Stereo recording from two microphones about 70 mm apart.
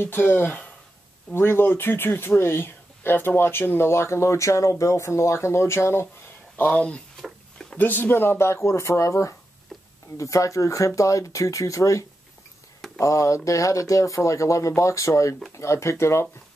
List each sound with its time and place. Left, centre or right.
0.0 s speech: left
6.5 s speech: left
9.7 s a sound: centre
10.1 s speech: left